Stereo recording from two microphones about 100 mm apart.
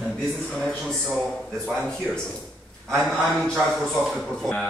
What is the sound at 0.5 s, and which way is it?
Speech, centre (ahead or behind).